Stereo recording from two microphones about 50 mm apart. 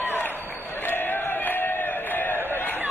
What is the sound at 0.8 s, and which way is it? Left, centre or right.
Crowd, left.